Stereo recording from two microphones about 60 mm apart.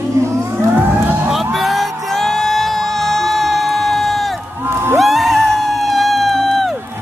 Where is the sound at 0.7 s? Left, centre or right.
Right.